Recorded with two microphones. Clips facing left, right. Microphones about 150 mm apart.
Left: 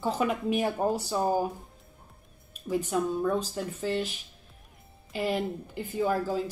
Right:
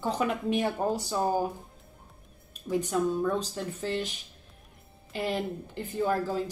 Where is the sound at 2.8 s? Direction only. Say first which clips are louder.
Even; 5° left (ahead or behind).